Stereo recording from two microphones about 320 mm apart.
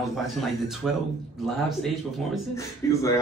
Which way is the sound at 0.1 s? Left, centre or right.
Centre.